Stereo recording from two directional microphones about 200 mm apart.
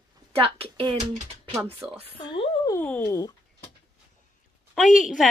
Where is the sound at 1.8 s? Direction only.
5° right (ahead or behind).